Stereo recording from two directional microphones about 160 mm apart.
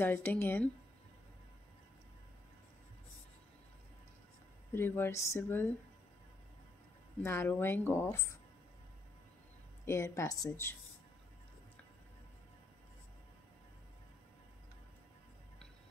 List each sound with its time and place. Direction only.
0.0 s a woman's voice: 10° left (ahead or behind)
4.7 s a woman's voice: 15° left (ahead or behind)
7.2 s a woman's voice: 15° left (ahead or behind)
9.8 s a woman's voice: 15° left (ahead or behind)